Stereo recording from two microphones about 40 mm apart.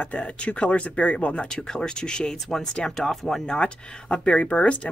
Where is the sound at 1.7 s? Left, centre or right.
Centre.